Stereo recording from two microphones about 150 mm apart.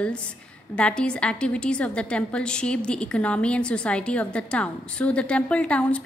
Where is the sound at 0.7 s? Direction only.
5° left (ahead or behind).